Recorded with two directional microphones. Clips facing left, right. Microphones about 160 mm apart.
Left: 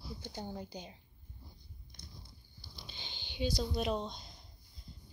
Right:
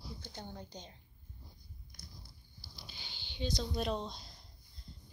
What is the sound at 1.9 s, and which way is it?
Biting, 25° left (ahead or behind).